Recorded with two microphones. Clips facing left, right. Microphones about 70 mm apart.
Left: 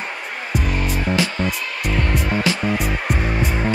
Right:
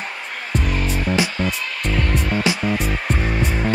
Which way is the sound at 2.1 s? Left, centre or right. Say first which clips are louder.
Even; centre.